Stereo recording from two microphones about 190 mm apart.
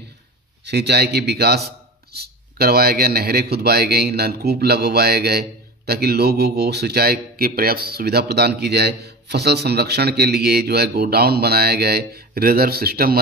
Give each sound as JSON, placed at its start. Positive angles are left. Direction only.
{"t": 0.7, "sound": "speech", "side_deg": -60}